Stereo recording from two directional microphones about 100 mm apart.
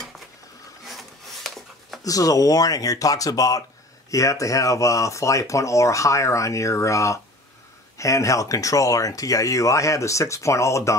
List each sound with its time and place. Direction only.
0.8 s rub: centre (ahead or behind)
2.0 s speech: 35° left (ahead or behind)